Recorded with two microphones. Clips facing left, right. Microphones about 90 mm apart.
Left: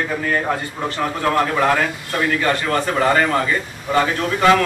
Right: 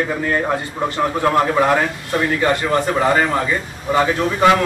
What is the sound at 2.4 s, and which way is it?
A man's voice, 20° right (ahead or behind).